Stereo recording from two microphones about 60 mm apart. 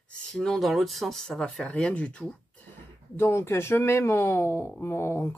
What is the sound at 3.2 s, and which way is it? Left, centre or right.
Speech, left.